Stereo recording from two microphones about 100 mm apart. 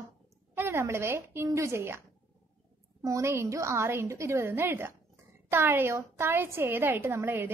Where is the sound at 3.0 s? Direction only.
30° right (ahead or behind).